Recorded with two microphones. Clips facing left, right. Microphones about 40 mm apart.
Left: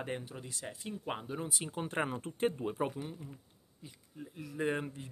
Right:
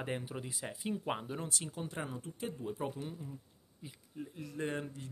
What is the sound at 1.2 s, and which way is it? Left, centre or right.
Speech, centre.